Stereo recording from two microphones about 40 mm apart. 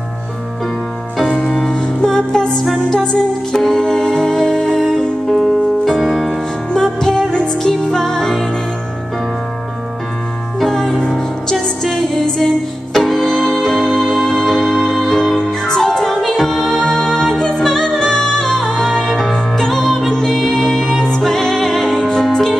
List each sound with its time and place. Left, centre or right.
1.1 s music: centre
1.4 s music: centre
5.4 s music: centre
6.7 s music: centre
10.7 s music: centre
20.1 s music: centre
20.3 s music: centre
21.8 s music: centre